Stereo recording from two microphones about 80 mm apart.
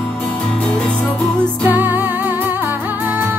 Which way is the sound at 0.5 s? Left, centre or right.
Centre.